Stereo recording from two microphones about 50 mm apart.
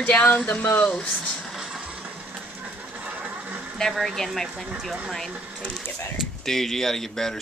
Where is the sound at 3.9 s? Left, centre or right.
Centre.